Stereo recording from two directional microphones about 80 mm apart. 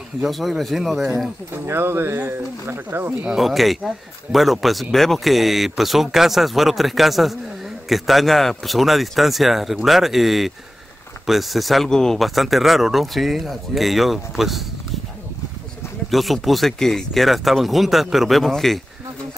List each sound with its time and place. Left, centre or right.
0.2 s speech: centre
1.7 s speech: right
3.3 s speech: centre
16.1 s speech: centre